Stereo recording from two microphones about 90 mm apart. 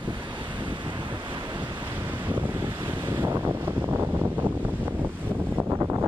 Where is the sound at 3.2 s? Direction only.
25° right (ahead or behind).